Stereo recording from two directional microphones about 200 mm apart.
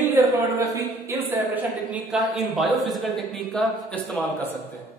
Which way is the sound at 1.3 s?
10° right (ahead or behind).